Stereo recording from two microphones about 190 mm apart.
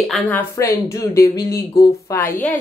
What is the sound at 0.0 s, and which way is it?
A woman's voice, 5° left (ahead or behind).